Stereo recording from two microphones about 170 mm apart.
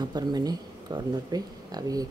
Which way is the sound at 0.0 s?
25° right (ahead or behind).